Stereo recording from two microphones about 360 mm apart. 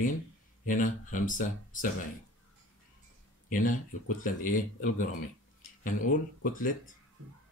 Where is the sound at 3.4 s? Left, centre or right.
Left.